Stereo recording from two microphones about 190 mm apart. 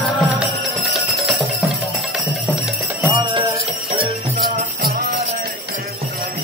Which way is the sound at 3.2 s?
25° right (ahead or behind).